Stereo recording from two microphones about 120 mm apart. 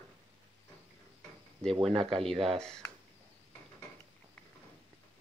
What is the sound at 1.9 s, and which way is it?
Speech, 50° right (ahead or behind).